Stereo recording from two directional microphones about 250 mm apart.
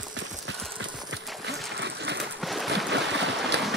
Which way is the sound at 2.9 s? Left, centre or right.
Right.